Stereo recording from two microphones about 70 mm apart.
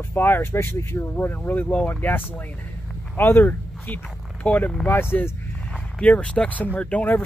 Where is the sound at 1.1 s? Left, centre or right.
Left.